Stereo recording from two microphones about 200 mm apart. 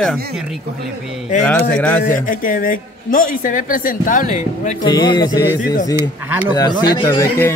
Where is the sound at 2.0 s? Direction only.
40° left (ahead or behind).